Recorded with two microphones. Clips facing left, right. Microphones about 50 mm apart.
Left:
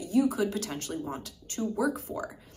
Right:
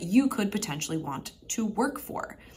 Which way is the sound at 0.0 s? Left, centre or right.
Right.